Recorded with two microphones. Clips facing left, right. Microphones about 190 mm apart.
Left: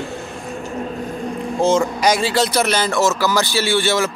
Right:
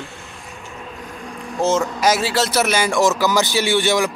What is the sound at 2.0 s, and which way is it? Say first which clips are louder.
Speech: left 1 dB; 5° right (ahead or behind).